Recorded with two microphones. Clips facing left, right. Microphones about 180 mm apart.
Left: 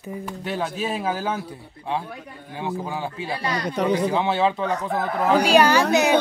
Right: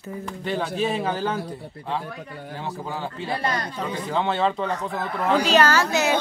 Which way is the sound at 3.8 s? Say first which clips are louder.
Left 8 dB; 80° left.